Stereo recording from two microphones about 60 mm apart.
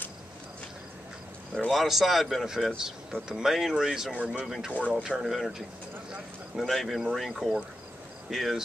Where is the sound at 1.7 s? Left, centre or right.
Centre.